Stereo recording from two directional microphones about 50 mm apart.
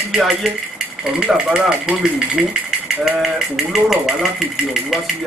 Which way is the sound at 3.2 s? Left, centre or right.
Centre.